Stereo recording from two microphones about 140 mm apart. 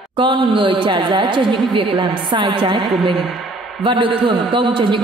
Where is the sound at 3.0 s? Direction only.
Centre (ahead or behind).